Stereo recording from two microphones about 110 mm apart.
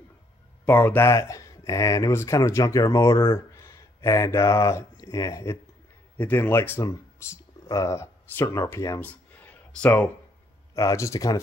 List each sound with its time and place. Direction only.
0.7 s speech: 15° left (ahead or behind)
6.1 s speech: 15° left (ahead or behind)
9.0 s a sound: 15° left (ahead or behind)
10.7 s speech: 30° left (ahead or behind)